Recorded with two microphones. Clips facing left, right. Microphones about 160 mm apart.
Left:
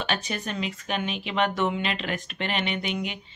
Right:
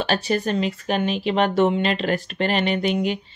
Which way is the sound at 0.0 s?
35° right (ahead or behind).